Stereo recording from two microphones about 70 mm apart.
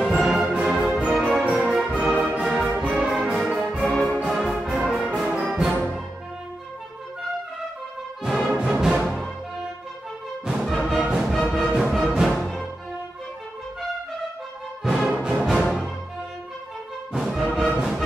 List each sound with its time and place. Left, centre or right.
0.0 s music: centre
1.5 s brass instrument: centre
2.4 s music: centre
3.9 s music: centre
5.4 s brass instrument: centre
8.2 s music: centre
14.8 s music: centre
17.1 s music: centre